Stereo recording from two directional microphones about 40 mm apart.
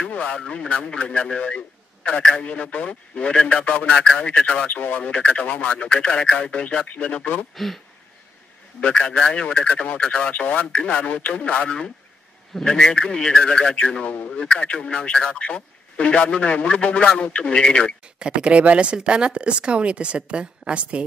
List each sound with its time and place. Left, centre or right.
0.1 s speech: left
4.7 s speech: left
7.5 s speech: centre
8.9 s speech: left
18.2 s a woman's voice: right